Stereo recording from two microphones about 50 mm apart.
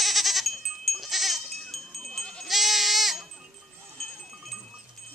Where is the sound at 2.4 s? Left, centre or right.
Centre.